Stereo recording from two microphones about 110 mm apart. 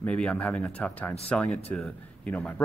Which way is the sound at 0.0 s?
10° left (ahead or behind).